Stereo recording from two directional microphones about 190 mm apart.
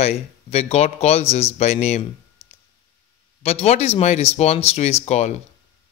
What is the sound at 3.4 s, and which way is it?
Speech, 35° left (ahead or behind).